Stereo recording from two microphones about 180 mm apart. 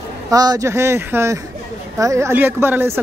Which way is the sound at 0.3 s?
20° right (ahead or behind).